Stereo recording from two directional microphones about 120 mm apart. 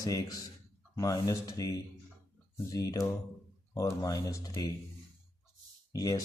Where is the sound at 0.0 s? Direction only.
30° left (ahead or behind).